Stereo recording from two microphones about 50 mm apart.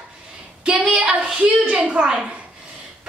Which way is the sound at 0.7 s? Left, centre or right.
Right.